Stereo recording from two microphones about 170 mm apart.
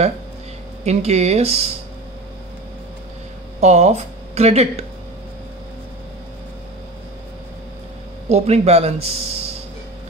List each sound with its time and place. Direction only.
0.8 s speech: 40° right (ahead or behind)
3.6 s speech: 40° right (ahead or behind)
8.3 s speech: 40° right (ahead or behind)